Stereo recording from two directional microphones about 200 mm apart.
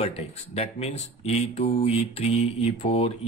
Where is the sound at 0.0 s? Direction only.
30° left (ahead or behind).